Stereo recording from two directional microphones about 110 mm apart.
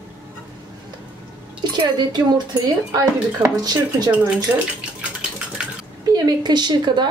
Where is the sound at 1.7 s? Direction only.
40° right (ahead or behind).